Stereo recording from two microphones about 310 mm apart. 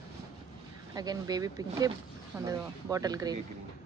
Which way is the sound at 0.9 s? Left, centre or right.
Centre.